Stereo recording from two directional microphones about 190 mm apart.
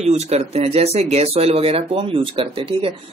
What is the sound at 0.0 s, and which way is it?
Speech, 35° right (ahead or behind).